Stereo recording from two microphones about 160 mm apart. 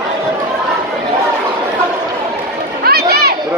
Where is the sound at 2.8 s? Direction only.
75° right (ahead or behind).